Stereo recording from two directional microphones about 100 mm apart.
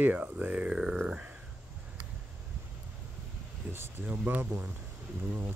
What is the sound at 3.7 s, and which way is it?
Speech, 20° right (ahead or behind).